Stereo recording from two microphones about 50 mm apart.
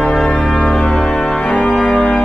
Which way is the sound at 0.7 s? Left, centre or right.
Left.